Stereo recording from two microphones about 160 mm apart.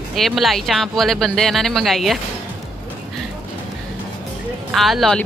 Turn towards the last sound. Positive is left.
turn(degrees=0)  # may be behind; listen again after turning